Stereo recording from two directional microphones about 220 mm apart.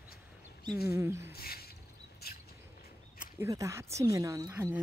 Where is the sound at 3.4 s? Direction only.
15° right (ahead or behind).